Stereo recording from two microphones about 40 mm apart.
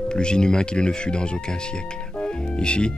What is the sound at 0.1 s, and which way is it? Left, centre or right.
Speech, left.